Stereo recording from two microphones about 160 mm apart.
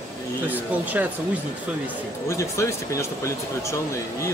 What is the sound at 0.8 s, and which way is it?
Speech, 10° right (ahead or behind).